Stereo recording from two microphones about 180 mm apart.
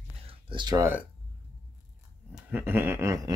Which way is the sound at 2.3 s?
10° right (ahead or behind).